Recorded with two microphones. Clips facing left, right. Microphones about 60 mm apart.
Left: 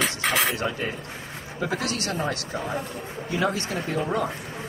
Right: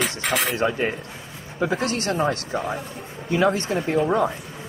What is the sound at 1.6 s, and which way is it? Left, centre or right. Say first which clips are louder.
Speech: right 4 dB; right.